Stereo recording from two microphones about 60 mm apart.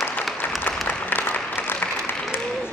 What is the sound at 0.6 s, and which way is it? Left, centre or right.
Applause, left.